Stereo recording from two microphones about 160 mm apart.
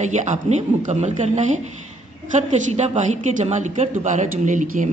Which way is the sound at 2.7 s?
45° right (ahead or behind).